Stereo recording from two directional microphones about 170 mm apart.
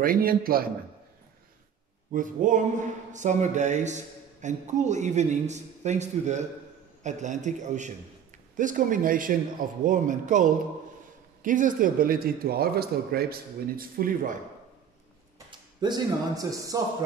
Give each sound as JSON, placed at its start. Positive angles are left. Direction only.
{"t": 0.0, "sound": "a man's voice", "side_deg": -60}
{"t": 2.1, "sound": "a man's voice", "side_deg": -50}
{"t": 15.3, "sound": "speech", "side_deg": -25}